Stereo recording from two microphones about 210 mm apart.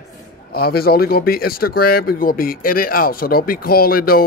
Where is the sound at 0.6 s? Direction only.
45° left (ahead or behind).